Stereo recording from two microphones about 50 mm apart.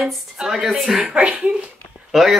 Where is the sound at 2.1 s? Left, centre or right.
Centre.